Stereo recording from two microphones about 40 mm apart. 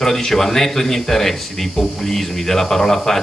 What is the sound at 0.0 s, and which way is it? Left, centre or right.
Speech, centre.